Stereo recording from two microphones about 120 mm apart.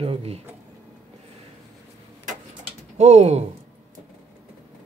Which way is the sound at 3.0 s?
70° right (ahead or behind).